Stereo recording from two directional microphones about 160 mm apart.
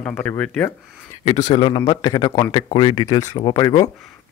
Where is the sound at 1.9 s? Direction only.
25° left (ahead or behind).